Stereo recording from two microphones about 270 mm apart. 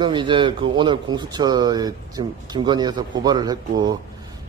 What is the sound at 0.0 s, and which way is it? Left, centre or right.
Speech, centre.